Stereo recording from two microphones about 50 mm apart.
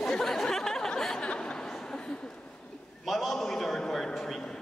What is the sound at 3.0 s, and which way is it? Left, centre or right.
A man's voice, centre.